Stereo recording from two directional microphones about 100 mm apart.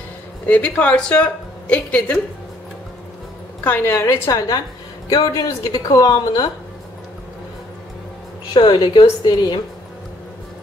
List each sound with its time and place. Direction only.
0.5 s a woman's voice: 15° left (ahead or behind)
3.6 s a woman's voice: 25° left (ahead or behind)
5.1 s speech: 45° left (ahead or behind)
8.5 s a woman's voice: 50° left (ahead or behind)